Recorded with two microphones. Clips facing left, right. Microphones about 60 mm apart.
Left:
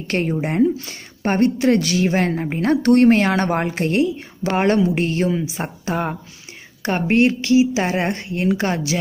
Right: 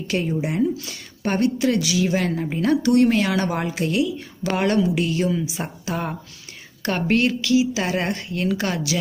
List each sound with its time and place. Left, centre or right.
0.0 s a woman's voice: left